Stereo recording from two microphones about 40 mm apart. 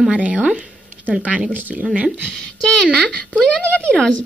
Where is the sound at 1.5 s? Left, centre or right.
Right.